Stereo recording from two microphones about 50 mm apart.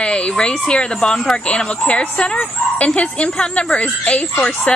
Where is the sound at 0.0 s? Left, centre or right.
Centre.